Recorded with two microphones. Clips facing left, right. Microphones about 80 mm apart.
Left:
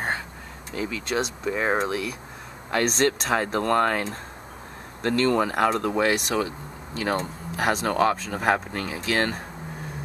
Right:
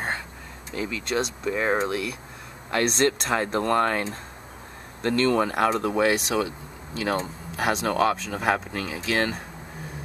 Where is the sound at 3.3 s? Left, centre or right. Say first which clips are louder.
Left 1 dB; centre.